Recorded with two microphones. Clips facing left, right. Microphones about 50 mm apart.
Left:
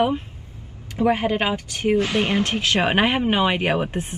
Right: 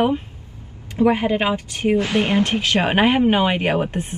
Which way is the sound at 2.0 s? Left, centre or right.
Right.